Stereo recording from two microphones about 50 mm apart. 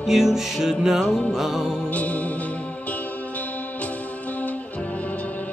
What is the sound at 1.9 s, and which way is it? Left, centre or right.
Music, left.